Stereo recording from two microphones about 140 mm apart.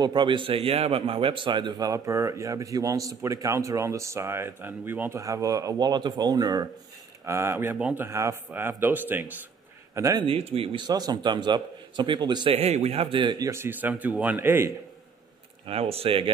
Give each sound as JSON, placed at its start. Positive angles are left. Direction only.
{"t": 0.0, "sound": "a man's voice", "side_deg": -30}
{"t": 5.2, "sound": "a man's voice", "side_deg": -25}
{"t": 10.2, "sound": "a man's voice", "side_deg": -40}
{"t": 12.5, "sound": "speech", "side_deg": -50}
{"t": 13.5, "sound": "speech", "side_deg": -15}
{"t": 15.6, "sound": "speech", "side_deg": -45}